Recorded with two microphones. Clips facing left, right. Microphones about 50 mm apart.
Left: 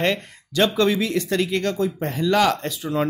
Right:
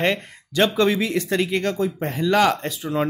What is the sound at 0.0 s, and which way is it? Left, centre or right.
Speech, centre.